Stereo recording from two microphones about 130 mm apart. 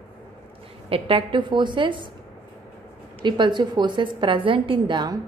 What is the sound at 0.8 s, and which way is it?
A woman's voice, 45° right (ahead or behind).